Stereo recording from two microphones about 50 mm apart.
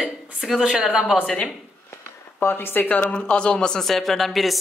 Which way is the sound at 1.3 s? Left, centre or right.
Centre.